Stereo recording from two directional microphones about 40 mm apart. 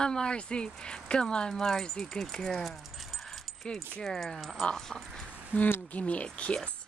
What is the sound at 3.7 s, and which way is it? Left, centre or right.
Speech, centre.